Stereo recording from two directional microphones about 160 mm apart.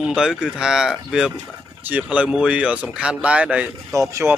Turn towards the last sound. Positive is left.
turn(degrees=-20)  # may be behind; listen again after turning